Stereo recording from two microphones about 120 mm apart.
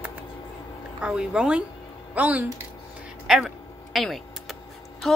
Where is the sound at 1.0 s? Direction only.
5° right (ahead or behind).